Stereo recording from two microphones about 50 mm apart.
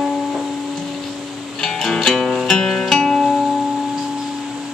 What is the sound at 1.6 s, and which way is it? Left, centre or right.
Music, centre.